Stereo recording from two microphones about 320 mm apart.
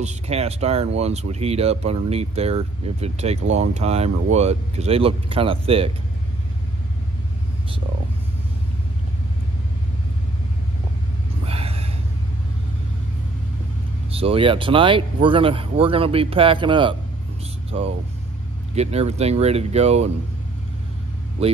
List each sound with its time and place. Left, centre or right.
0.0 s speech: centre
11.4 s a sound: centre
14.1 s speech: centre
21.4 s speech: centre